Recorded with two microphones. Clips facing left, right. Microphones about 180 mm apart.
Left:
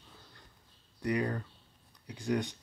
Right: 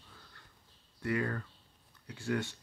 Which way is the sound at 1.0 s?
15° left (ahead or behind).